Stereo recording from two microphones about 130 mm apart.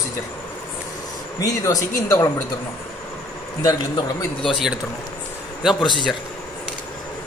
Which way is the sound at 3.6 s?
35° left (ahead or behind).